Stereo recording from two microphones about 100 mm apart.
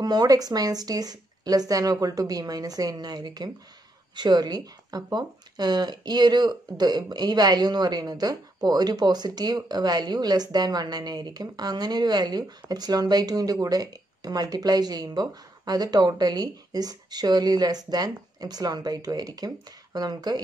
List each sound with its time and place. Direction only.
0.0 s speech: 40° right (ahead or behind)